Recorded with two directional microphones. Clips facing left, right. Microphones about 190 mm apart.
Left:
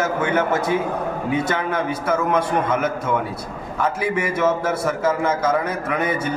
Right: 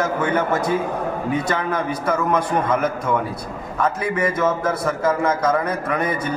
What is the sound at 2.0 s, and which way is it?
A man's voice, 5° left (ahead or behind).